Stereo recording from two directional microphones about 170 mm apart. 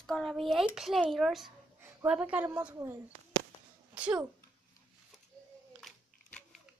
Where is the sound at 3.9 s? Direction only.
5° right (ahead or behind).